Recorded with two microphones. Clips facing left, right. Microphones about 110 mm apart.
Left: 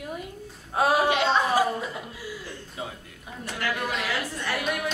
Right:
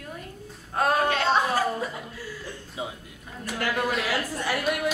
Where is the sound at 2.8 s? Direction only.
15° right (ahead or behind).